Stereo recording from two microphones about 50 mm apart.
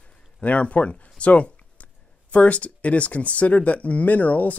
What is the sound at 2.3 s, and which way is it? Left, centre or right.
Speech, left.